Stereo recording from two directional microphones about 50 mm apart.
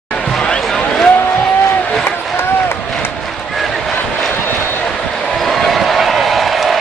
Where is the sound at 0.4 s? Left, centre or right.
Centre.